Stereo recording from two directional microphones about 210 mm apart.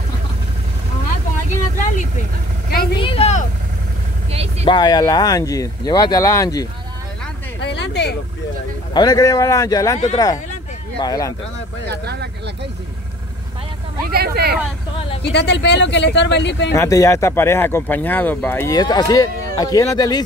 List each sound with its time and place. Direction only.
2.7 s speech: 50° left (ahead or behind)
3.0 s vehicle: 25° left (ahead or behind)
4.3 s vehicle: 30° right (ahead or behind)
4.6 s speech: 20° left (ahead or behind)
7.6 s a sound: 55° left (ahead or behind)
8.9 s speech: 20° left (ahead or behind)
11.9 s speech: 50° right (ahead or behind)
14.1 s speech: 50° right (ahead or behind)
15.3 s speech: 55° left (ahead or behind)
16.7 s speech: 15° left (ahead or behind)